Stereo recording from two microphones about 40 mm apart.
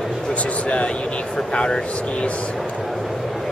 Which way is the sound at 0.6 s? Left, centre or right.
Left.